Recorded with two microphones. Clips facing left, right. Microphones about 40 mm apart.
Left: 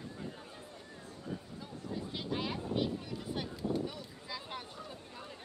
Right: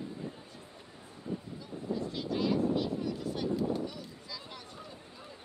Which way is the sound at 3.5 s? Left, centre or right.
Centre.